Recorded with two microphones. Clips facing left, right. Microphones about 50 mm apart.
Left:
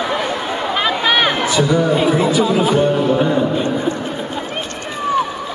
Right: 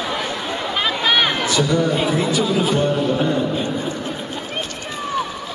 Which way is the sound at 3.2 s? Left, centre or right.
Centre.